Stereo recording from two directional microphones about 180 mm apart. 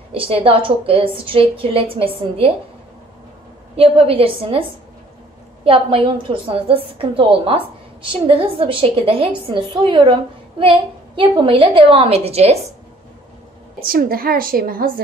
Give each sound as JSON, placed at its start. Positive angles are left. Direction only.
{"t": 0.1, "sound": "a woman's voice", "side_deg": -30}
{"t": 3.7, "sound": "a woman's voice", "side_deg": -30}
{"t": 13.8, "sound": "a woman's voice", "side_deg": -55}